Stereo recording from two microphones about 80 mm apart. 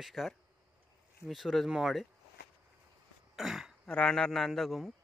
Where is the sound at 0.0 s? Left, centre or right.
Centre.